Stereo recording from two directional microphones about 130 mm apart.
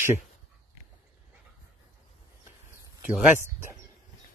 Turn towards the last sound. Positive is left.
turn(degrees=-15)  # may be behind; listen again after turning